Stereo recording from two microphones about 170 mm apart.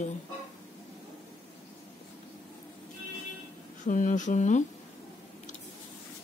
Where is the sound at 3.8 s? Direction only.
50° left (ahead or behind).